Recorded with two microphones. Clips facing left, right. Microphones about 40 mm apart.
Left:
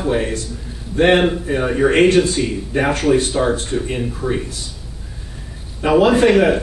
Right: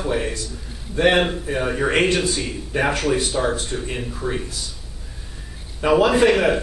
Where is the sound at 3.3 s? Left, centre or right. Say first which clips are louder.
Left 4 dB; centre.